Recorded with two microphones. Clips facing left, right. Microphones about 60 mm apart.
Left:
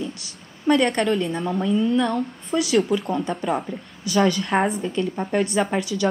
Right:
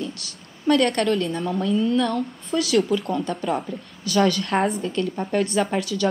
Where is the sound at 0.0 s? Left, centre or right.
Centre.